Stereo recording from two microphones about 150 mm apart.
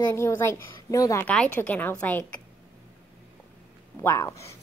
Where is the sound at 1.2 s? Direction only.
10° left (ahead or behind).